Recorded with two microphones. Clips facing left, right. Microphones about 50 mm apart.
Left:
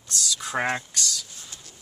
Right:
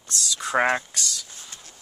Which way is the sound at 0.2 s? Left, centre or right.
Centre.